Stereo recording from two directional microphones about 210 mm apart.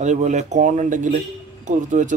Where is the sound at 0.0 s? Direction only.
35° right (ahead or behind).